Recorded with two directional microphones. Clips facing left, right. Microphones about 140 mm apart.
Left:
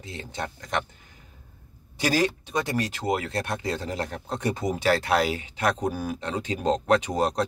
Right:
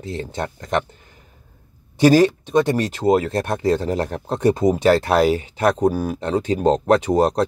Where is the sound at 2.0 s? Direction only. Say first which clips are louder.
Right 11 dB; 50° right (ahead or behind).